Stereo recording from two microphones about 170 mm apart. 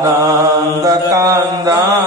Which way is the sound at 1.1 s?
20° right (ahead or behind).